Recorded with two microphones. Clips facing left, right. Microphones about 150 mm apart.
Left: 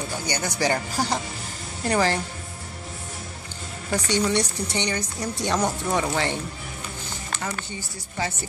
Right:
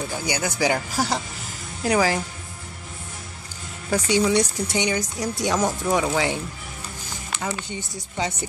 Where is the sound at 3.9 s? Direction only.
10° right (ahead or behind).